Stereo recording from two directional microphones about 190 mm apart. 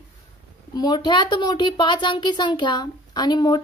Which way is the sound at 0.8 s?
25° left (ahead or behind).